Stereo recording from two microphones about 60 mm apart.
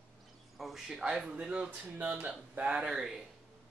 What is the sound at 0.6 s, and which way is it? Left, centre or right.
Speech, centre.